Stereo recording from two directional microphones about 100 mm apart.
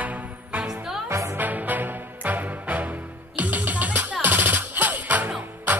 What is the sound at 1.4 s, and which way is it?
Music, 15° right (ahead or behind).